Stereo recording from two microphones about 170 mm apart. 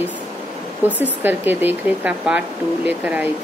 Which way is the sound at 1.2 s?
10° right (ahead or behind).